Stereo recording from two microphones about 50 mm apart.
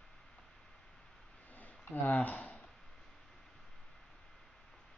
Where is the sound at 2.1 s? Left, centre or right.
Left.